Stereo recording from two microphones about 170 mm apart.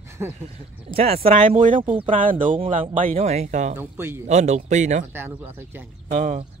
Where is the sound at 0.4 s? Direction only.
35° right (ahead or behind).